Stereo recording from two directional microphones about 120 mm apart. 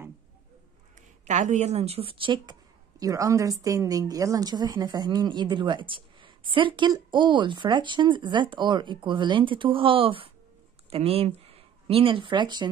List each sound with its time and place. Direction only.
1.2 s a woman's voice: 85° right; by 2.5 s 40° right (ahead or behind)
3.0 s a woman's voice: 30° right (ahead or behind)